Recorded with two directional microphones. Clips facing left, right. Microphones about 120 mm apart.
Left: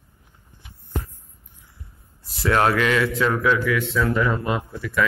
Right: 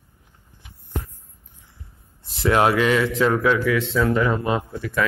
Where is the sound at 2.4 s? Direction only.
20° right (ahead or behind).